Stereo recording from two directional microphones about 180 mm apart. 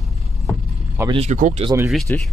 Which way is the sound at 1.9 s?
5° left (ahead or behind).